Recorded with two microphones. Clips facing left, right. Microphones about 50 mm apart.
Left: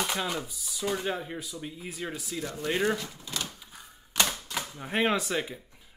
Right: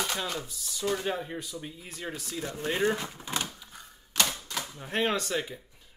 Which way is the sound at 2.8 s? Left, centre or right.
Right.